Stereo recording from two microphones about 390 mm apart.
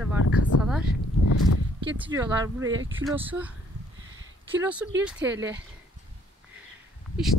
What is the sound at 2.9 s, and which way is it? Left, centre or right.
Speech, centre.